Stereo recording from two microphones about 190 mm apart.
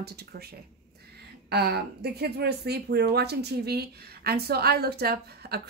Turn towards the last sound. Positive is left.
turn(degrees=-55)  # may be behind; listen again after turning